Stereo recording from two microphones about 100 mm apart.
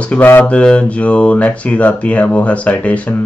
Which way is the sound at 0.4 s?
10° left (ahead or behind).